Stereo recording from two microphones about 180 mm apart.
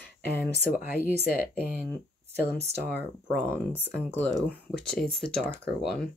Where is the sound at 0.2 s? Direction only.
55° left (ahead or behind).